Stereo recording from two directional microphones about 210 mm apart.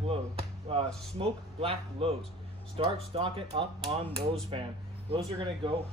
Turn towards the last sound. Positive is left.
turn(degrees=-25)  # may be behind; listen again after turning